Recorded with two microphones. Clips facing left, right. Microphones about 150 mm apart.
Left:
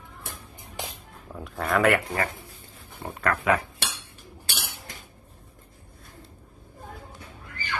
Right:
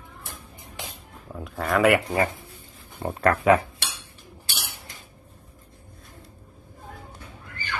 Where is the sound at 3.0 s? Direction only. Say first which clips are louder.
Right 5 dB; 35° right (ahead or behind).